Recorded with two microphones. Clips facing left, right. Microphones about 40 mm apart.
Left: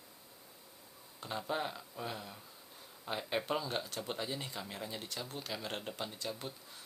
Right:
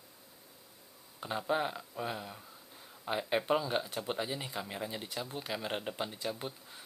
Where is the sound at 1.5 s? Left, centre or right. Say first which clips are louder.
Right 6 dB; centre.